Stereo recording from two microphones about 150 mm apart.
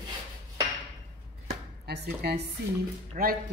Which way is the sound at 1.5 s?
90° right.